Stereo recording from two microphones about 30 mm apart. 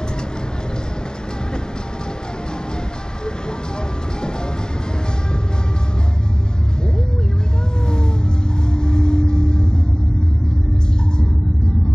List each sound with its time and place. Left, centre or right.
8.7 s vehicle: left